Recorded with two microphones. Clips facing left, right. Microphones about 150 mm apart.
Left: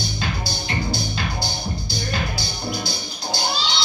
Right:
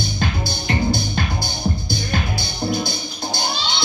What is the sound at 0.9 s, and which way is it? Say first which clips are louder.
Music: right 4 dB; 50° right (ahead or behind).